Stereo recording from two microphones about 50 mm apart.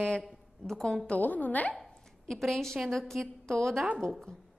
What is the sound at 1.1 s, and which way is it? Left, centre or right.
Speech, left.